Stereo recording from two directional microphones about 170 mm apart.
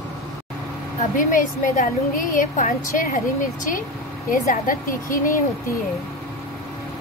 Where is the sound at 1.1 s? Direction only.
50° left (ahead or behind).